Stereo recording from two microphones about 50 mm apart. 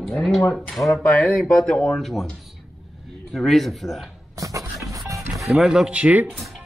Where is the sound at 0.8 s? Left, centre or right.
Left.